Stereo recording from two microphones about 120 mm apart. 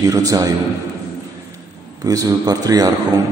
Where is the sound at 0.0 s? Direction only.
30° right (ahead or behind).